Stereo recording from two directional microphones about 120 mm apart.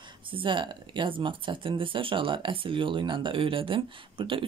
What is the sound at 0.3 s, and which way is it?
Speech, 45° right (ahead or behind).